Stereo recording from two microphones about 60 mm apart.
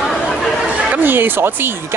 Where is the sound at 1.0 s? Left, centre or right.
Right.